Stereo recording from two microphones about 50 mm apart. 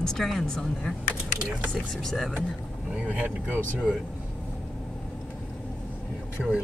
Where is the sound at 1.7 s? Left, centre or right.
Centre.